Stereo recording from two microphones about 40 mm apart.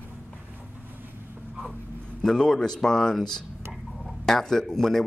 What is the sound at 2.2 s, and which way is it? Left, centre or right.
Speech, centre.